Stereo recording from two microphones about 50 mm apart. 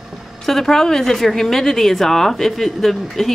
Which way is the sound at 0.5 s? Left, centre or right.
Centre.